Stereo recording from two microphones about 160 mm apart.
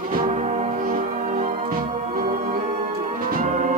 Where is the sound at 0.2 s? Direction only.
45° right (ahead or behind).